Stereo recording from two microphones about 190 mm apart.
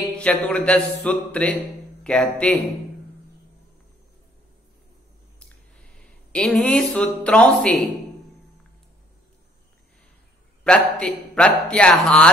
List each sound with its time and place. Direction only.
0.2 s a man's voice: 5° left (ahead or behind)
6.3 s speech: 5° left (ahead or behind)
10.6 s a man's voice: 5° left (ahead or behind)